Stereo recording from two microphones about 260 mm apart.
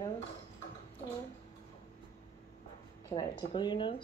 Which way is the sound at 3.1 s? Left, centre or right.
Centre.